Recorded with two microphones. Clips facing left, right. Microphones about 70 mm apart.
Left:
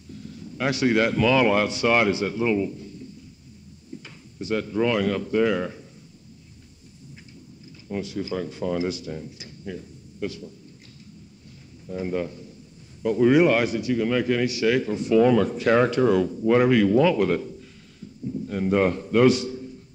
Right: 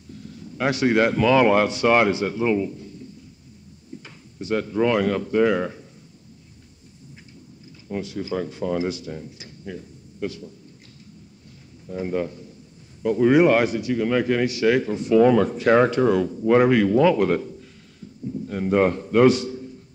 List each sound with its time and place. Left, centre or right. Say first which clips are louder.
0.1 s speech: even; right
3.9 s a sound: even; right
4.4 s speech: right 2 dB; right
7.9 s speech: right 1 dB; right
11.9 s a man's voice: right 2 dB; right
13.0 s a man's voice: right 1 dB; right
18.3 s a sound: right 1 dB; right